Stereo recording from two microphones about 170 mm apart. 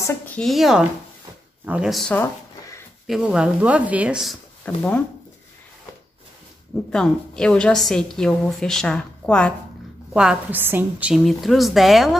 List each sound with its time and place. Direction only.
0.0 s a sound: 15° left (ahead or behind)
0.4 s a woman's voice: centre (ahead or behind)
2.1 s a sound: 15° left (ahead or behind)
3.1 s speech: 5° right (ahead or behind)
4.6 s speech: 10° left (ahead or behind)
6.9 s a woman's voice: 5° left (ahead or behind)
10.1 s a woman's voice: 10° right (ahead or behind)